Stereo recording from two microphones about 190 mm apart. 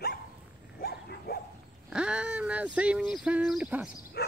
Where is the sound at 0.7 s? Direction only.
55° left (ahead or behind).